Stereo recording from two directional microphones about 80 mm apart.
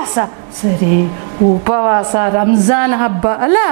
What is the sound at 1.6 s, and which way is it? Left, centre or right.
Speech, right.